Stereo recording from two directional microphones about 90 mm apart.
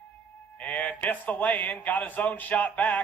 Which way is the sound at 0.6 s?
15° left (ahead or behind).